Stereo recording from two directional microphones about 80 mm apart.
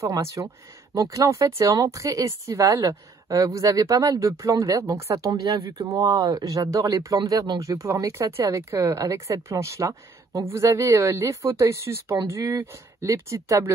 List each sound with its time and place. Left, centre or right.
0.0 s speech: right